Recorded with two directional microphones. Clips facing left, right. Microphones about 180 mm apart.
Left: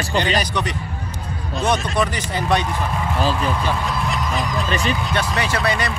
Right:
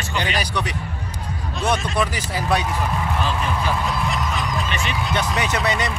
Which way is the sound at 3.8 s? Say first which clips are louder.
Even; centre (ahead or behind).